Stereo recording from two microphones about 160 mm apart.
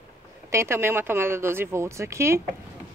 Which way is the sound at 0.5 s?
15° right (ahead or behind).